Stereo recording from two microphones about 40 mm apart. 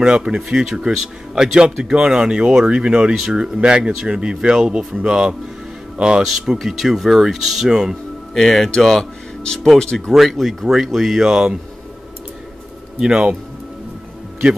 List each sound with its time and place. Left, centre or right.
0.0 s speech: right
8.4 s speech: centre
9.4 s speech: left
10.1 s speech: centre
13.0 s speech: right